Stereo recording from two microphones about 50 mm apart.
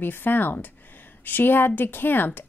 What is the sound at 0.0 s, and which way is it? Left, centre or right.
A woman's voice, left.